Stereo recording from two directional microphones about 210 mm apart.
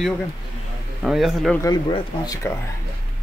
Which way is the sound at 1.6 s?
15° left (ahead or behind).